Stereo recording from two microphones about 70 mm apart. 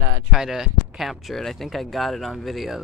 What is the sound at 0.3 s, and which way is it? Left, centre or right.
Speech, centre.